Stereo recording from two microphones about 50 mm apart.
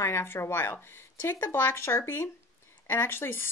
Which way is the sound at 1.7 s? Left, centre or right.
Left.